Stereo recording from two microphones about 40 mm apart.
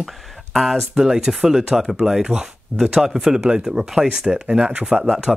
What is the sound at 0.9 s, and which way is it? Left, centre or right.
Speech, centre.